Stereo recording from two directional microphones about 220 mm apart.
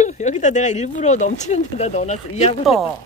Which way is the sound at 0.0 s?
35° left (ahead or behind).